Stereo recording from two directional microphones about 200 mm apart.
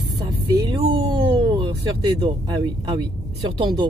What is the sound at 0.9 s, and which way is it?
Speech, 20° right (ahead or behind).